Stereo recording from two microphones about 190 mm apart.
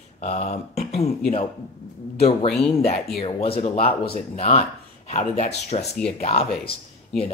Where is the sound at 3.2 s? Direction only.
30° left (ahead or behind).